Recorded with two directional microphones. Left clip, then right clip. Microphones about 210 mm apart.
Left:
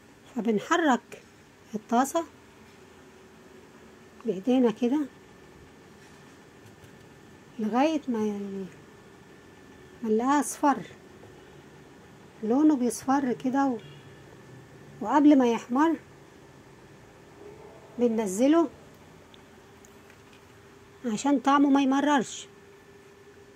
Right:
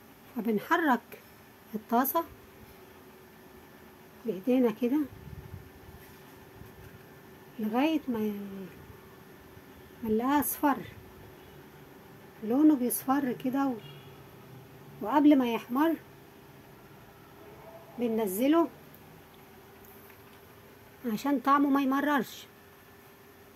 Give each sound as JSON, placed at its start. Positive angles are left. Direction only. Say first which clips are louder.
{"t": 0.4, "sound": "speech", "louder": "left 3 dB", "side_deg": 10}
{"t": 4.3, "sound": "speech", "louder": "left 3 dB", "side_deg": 10}
{"t": 7.7, "sound": "speech", "louder": "left 3 dB", "side_deg": 10}
{"t": 10.1, "sound": "speech", "louder": "left 3 dB", "side_deg": 10}
{"t": 12.4, "sound": "speech", "louder": "left 2 dB", "side_deg": 10}
{"t": 15.0, "sound": "speech", "louder": "left 3 dB", "side_deg": 10}
{"t": 17.9, "sound": "speech", "louder": "left 4 dB", "side_deg": 10}
{"t": 21.0, "sound": "speech", "louder": "left 4 dB", "side_deg": 10}